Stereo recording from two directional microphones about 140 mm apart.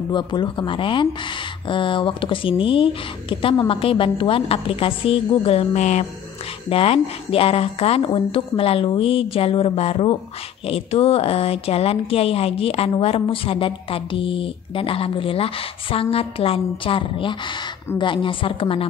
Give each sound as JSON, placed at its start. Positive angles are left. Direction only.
{"t": 0.1, "sound": "speech", "side_deg": 35}
{"t": 6.7, "sound": "a woman's voice", "side_deg": 40}